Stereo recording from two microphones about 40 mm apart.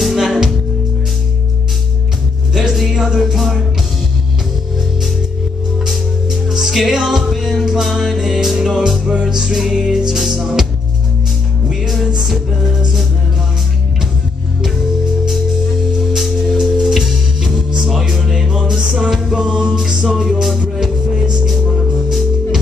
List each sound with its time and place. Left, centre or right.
0.0 s music: centre
2.7 s music: centre
5.9 s music: centre
9.5 s music: centre
16.2 s music: centre
19.4 s music: centre